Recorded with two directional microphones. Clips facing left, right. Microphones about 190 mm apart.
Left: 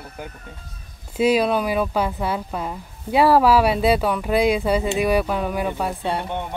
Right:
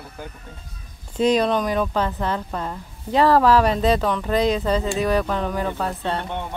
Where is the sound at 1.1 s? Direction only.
10° left (ahead or behind).